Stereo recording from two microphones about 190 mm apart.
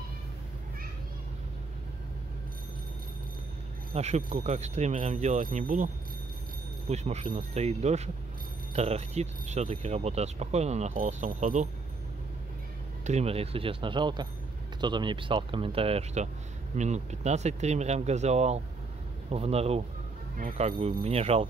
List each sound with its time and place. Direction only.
3.9 s speech: 35° right (ahead or behind)
6.9 s speech: 35° right (ahead or behind)
13.0 s speech: 35° right (ahead or behind)